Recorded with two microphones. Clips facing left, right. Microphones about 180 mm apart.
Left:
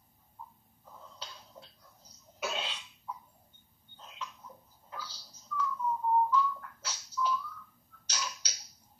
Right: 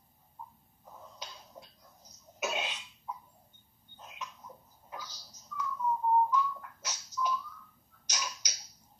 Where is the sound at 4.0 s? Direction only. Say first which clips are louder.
Even; 10° right (ahead or behind).